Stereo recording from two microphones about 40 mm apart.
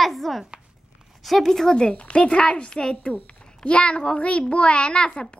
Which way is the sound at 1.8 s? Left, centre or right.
Left.